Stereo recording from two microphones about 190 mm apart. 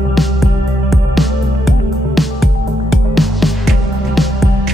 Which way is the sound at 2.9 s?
Centre (ahead or behind).